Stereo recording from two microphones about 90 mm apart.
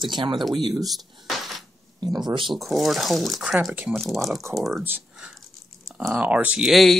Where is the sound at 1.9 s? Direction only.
50° right (ahead or behind).